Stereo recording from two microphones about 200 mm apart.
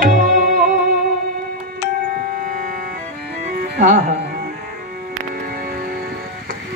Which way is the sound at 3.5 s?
50° right (ahead or behind).